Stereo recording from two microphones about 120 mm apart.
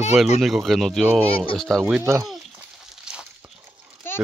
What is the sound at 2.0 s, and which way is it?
Speech, 25° right (ahead or behind).